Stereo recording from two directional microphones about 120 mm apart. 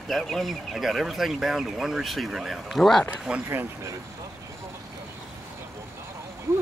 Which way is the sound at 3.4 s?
20° right (ahead or behind).